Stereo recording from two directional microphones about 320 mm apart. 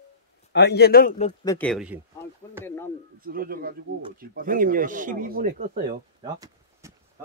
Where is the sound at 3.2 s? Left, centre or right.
Right.